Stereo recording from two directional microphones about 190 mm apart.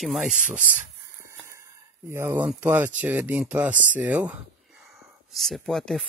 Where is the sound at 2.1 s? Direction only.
10° right (ahead or behind).